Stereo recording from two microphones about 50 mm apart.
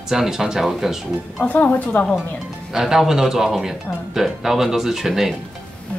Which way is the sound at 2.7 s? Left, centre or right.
Centre.